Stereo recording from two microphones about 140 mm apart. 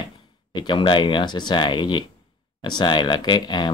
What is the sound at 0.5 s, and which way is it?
Speech, 35° left (ahead or behind).